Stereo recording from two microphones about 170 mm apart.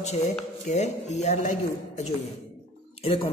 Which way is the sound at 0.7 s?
40° left (ahead or behind).